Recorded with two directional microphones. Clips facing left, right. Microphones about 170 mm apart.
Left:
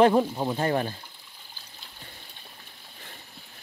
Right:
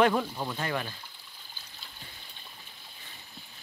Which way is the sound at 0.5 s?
35° left (ahead or behind).